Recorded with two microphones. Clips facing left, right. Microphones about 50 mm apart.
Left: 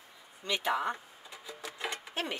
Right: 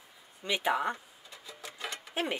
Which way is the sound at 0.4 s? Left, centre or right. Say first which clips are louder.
Right 2 dB; centre.